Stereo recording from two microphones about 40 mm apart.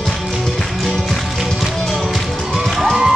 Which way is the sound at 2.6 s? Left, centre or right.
Centre.